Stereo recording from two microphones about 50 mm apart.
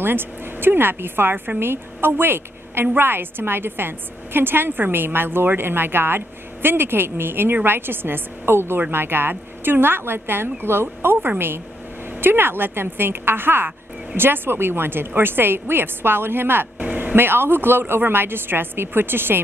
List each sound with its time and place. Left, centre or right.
0.0 s a woman's voice: right